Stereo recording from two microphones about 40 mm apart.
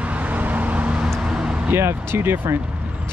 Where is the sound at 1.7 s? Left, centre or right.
Right.